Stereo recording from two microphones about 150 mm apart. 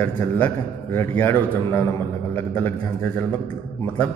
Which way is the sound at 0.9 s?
15° left (ahead or behind).